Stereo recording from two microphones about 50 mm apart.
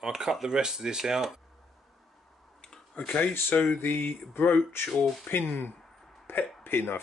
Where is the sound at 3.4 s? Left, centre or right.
Left.